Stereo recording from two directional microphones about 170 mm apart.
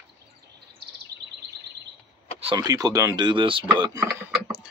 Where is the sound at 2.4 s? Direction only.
25° right (ahead or behind).